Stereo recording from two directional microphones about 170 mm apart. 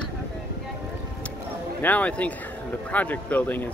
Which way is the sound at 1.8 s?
10° left (ahead or behind).